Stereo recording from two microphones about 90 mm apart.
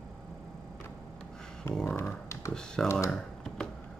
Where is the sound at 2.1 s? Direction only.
35° left (ahead or behind).